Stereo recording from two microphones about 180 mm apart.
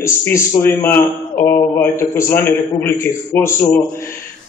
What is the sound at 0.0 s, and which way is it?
A man's voice, 15° left (ahead or behind).